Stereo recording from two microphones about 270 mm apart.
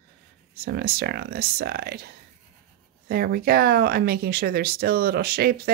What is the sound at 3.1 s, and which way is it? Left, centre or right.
Speech, right.